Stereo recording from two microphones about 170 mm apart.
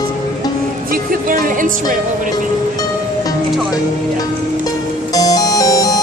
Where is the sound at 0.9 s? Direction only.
55° right (ahead or behind).